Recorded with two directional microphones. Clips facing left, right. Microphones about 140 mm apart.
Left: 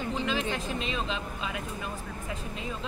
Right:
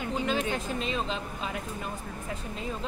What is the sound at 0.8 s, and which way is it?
Speech, 40° right (ahead or behind).